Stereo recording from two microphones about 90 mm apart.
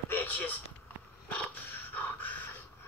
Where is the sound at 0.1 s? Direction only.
20° left (ahead or behind).